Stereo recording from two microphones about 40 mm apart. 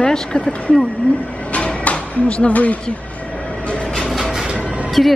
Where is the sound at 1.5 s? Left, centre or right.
Left.